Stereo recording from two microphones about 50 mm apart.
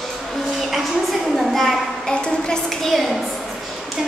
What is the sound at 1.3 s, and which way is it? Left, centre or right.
Speech, centre.